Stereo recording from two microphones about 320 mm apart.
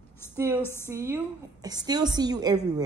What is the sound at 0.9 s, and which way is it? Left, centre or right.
A woman's voice, centre.